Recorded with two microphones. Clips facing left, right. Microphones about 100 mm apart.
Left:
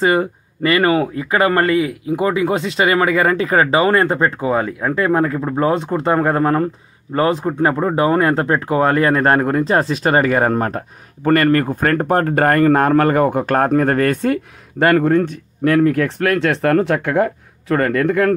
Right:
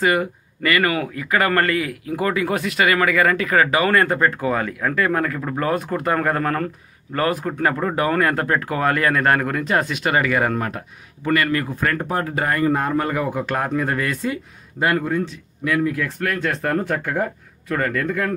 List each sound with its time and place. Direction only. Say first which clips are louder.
0.0 s speech: left 4 dB; 30° left (ahead or behind); by 18.3 s 65° left (ahead or behind)